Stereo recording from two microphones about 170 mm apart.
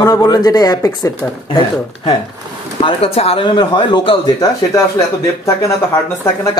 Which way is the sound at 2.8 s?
35° left (ahead or behind).